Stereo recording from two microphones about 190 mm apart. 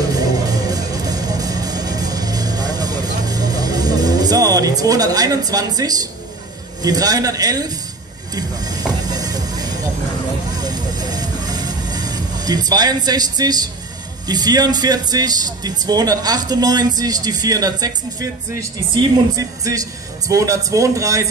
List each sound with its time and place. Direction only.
0.2 s music: 20° right (ahead or behind)
6.8 s a man's voice: 20° right (ahead or behind)
9.1 s music: 20° right (ahead or behind)
10.6 s vehicle: 20° right (ahead or behind)
14.2 s a man's voice: 20° right (ahead or behind)